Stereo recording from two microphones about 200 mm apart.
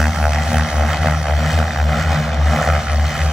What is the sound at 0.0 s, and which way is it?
Vehicle, centre (ahead or behind).